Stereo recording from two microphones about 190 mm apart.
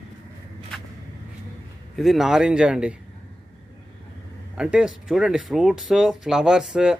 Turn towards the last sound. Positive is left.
turn(degrees=-5)  # may be behind; listen again after turning